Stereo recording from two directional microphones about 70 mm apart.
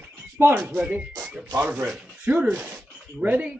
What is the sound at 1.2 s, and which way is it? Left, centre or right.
Music, centre.